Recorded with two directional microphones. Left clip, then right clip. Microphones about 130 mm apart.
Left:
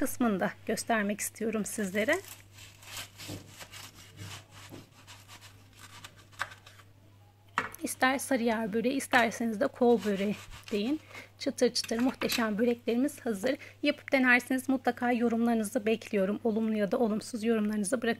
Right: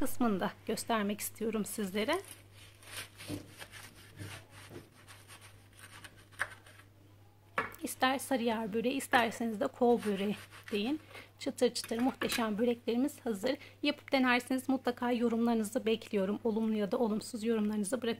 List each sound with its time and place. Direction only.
0.0 s a woman's voice: 20° left (ahead or behind)
7.8 s a woman's voice: 25° left (ahead or behind)